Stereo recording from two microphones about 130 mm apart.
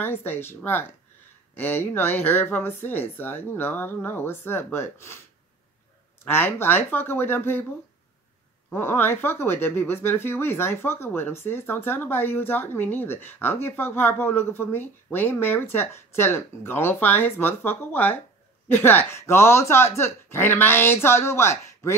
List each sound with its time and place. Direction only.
0.0 s speech: 15° left (ahead or behind)
6.2 s speech: 15° left (ahead or behind)
8.7 s speech: 15° left (ahead or behind)